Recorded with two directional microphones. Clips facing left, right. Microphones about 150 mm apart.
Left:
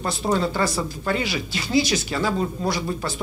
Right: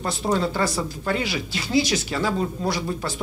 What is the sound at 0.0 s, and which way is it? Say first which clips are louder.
Speech: left 1 dB; 15° left (ahead or behind).